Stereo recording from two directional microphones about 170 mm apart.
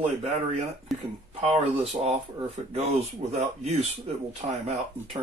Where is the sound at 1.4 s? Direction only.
40° right (ahead or behind).